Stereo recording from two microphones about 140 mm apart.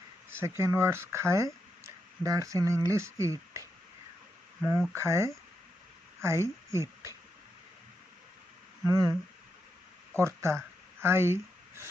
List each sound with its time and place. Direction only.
0.4 s speech: 20° right (ahead or behind)
4.6 s speech: centre (ahead or behind)
4.9 s speech: 20° right (ahead or behind)
8.8 s speech: 25° right (ahead or behind)
10.1 s a sound: 20° right (ahead or behind)